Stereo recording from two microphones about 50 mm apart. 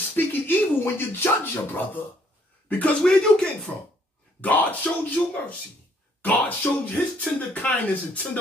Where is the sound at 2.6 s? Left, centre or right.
Left.